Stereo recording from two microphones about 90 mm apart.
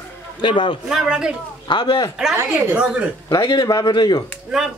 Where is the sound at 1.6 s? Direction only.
60° left (ahead or behind).